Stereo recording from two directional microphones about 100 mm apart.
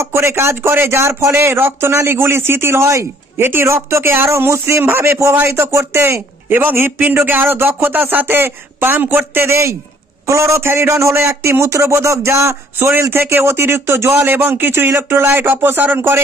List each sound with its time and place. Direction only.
0.0 s speech: 25° right (ahead or behind)